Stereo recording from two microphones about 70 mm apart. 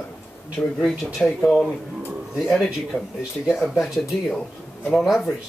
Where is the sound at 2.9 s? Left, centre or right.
Left.